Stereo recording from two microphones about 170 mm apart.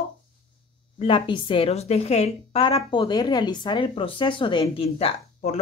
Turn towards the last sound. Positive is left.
turn(degrees=35)  # may be behind; listen again after turning